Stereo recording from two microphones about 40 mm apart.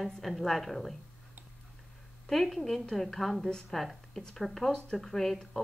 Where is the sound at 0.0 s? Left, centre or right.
Centre.